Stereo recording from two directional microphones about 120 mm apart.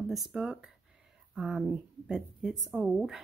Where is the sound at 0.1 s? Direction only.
5° right (ahead or behind).